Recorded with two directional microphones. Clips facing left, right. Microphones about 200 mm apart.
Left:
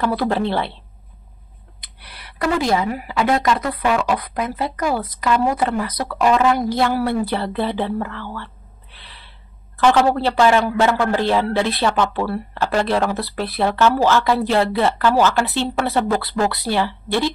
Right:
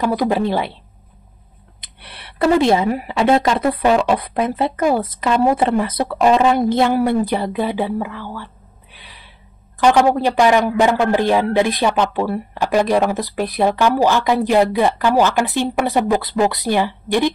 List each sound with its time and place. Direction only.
0.0 s a man's voice: 15° right (ahead or behind)
1.8 s speech: 25° right (ahead or behind)
8.9 s gasp: 15° right (ahead or behind)
9.8 s a man's voice: 15° right (ahead or behind)